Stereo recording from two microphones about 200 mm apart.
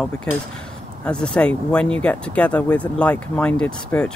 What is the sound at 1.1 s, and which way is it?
Speech, 5° left (ahead or behind).